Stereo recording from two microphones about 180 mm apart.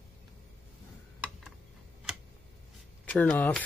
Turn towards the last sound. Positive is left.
turn(degrees=10)  # may be behind; listen again after turning